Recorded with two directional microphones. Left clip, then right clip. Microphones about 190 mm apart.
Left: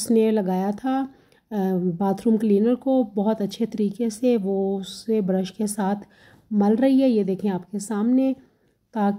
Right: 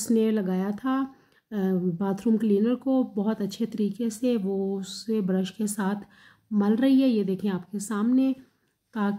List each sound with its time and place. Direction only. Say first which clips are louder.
0.0 s speech: left 5 dB; 20° left (ahead or behind)